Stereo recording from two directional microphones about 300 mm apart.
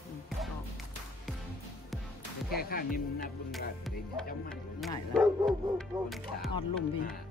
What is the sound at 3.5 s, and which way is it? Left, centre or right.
Speech, centre.